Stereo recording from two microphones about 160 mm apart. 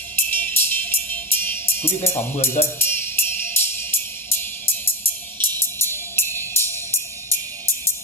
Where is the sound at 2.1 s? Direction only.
15° left (ahead or behind).